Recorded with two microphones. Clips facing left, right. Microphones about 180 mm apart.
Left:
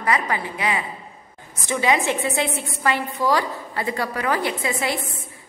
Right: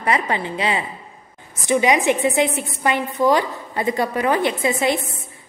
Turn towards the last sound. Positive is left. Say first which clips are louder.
# right 5 dB
turn(degrees=-20)  # may be behind; listen again after turning